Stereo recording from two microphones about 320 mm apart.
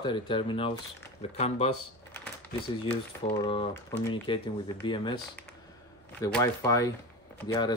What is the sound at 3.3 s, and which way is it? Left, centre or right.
Speech, centre.